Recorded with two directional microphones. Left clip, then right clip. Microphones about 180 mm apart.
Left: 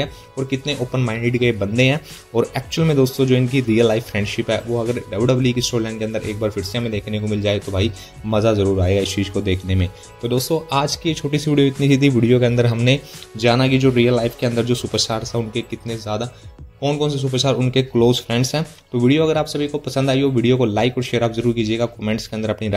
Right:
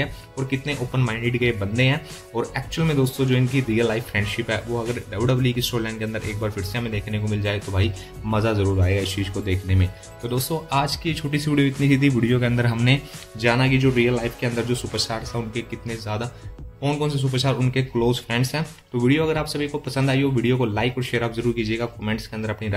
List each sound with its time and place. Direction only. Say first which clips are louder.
0.9 s speech: left 3 dB; 20° left (ahead or behind)